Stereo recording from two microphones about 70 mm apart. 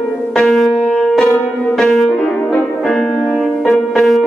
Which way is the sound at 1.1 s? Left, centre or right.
Centre.